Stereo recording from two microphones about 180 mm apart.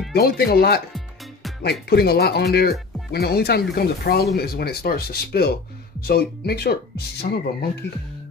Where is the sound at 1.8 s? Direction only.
60° left (ahead or behind).